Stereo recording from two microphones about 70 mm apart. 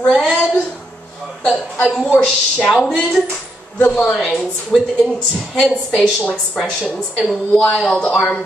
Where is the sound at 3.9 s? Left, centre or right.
Centre.